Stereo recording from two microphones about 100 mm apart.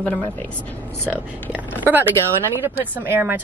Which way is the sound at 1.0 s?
15° right (ahead or behind).